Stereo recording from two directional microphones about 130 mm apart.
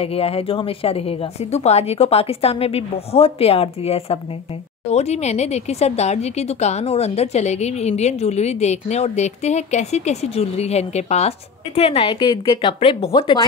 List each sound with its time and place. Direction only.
0.0 s a woman's voice: 50° left (ahead or behind)
12.1 s a woman's voice: 35° left (ahead or behind)